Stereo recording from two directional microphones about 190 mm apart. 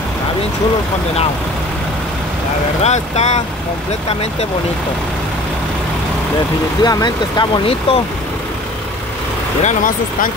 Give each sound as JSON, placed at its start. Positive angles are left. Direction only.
{"t": 2.8, "sound": "speech", "side_deg": 35}
{"t": 6.8, "sound": "speech", "side_deg": 20}
{"t": 9.6, "sound": "speech", "side_deg": 40}